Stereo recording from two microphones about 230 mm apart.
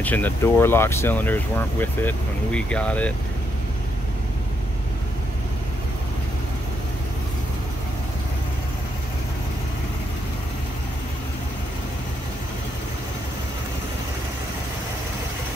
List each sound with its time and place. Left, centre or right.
0.0 s speech: centre